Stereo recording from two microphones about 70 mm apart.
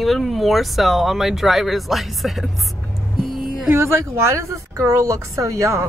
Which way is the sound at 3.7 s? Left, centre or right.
Right.